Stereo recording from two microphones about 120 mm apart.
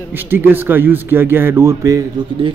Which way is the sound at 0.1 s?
15° right (ahead or behind).